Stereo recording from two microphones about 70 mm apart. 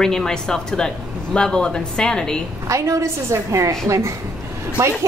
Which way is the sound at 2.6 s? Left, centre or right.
Right.